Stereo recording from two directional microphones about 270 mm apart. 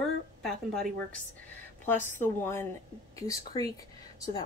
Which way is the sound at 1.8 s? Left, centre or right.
Centre.